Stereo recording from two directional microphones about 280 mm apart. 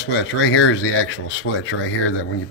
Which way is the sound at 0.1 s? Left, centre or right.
Left.